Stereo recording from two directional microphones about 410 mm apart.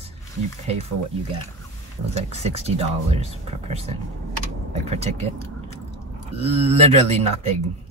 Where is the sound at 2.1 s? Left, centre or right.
Centre.